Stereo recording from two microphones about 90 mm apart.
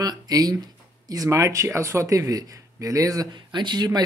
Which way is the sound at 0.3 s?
45° right (ahead or behind).